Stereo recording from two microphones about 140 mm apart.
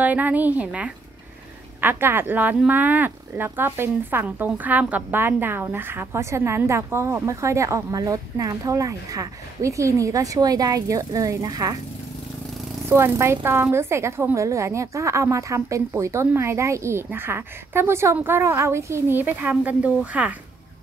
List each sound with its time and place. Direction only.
0.0 s a woman's voice: 10° right (ahead or behind)
12.8 s a woman's voice: 20° right (ahead or behind)